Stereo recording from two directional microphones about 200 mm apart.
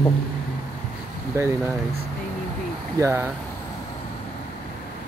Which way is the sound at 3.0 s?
10° right (ahead or behind).